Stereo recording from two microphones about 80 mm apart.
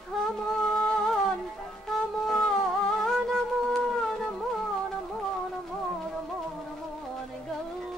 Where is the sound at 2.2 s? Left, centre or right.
Centre.